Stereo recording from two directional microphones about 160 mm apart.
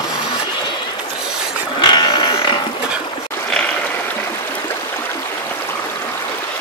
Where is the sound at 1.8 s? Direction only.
30° left (ahead or behind).